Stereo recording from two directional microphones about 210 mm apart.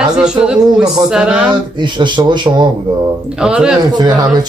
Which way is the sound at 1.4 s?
20° right (ahead or behind).